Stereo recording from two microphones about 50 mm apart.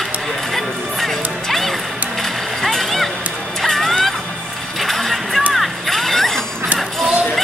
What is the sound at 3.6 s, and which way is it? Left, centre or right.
Music, centre.